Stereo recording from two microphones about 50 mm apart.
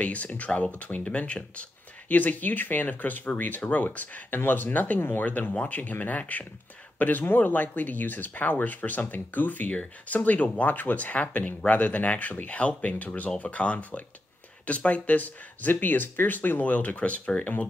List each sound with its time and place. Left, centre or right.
0.0 s speech: left